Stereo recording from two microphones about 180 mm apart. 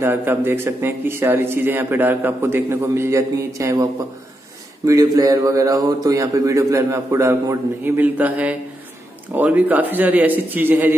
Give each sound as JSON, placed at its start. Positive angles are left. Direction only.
{"t": 0.0, "sound": "speech", "side_deg": -10}
{"t": 4.8, "sound": "speech", "side_deg": -20}